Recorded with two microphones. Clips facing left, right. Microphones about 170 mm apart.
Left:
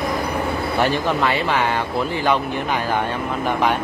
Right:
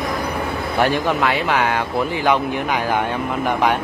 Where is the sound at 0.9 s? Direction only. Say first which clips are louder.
Right 1 dB; 15° right (ahead or behind).